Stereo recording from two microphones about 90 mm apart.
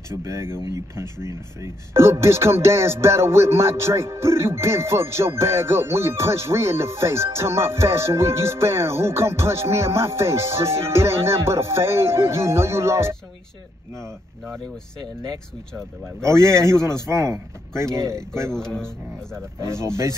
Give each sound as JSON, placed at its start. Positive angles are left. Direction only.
{"t": 0.1, "sound": "speech", "side_deg": -35}
{"t": 16.3, "sound": "speech", "side_deg": -30}
{"t": 18.3, "sound": "speech", "side_deg": 5}
{"t": 19.6, "sound": "speech", "side_deg": -30}